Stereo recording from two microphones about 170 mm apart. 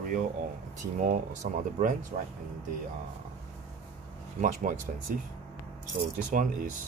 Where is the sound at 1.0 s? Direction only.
50° right (ahead or behind).